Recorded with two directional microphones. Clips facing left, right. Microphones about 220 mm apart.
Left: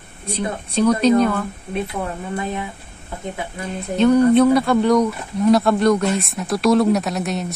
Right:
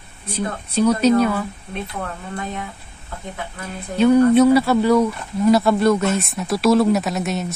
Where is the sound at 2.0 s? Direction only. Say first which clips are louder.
Left 4 dB; 15° left (ahead or behind).